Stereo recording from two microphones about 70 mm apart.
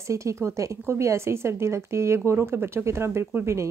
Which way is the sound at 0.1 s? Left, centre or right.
Right.